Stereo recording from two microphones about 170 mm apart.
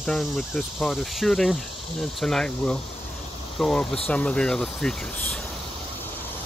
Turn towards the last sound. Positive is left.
turn(degrees=5)  # may be behind; listen again after turning